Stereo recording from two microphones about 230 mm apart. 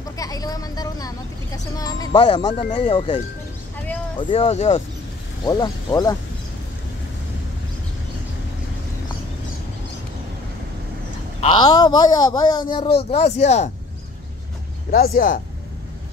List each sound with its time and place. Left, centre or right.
0.2 s speech: centre
4.2 s speech: left
5.4 s speech: centre
11.5 s speech: centre
14.9 s speech: left